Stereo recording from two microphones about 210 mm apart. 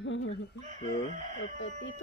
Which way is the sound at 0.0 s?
65° left (ahead or behind).